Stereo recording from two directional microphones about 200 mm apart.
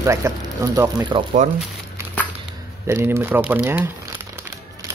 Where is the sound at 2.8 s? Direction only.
15° right (ahead or behind).